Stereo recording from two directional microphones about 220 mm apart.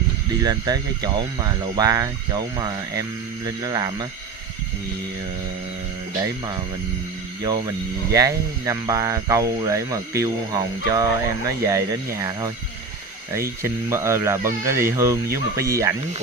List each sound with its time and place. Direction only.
0.4 s speech: 15° right (ahead or behind)
7.4 s speech: 15° right (ahead or behind)